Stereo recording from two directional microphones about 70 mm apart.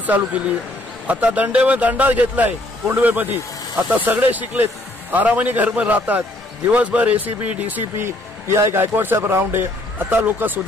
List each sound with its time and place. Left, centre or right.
0.0 s a man's voice: right
8.0 s a man's voice: right